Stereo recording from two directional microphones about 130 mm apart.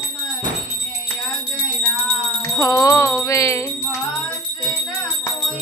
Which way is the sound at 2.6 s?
25° left (ahead or behind).